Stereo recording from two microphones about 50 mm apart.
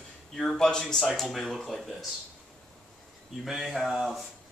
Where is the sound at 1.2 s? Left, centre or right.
Centre.